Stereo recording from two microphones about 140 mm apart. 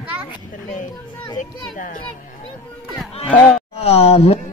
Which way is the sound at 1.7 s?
75° left (ahead or behind).